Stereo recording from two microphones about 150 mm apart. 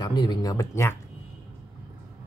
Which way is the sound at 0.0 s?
30° left (ahead or behind).